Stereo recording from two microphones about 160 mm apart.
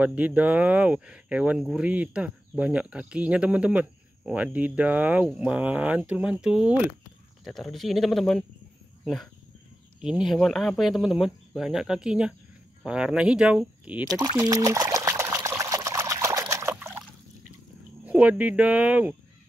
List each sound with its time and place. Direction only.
0.0 s speech: 10° right (ahead or behind)
14.0 s speech: 25° right (ahead or behind)
14.4 s water: 20° right (ahead or behind)
18.0 s speech: 10° right (ahead or behind)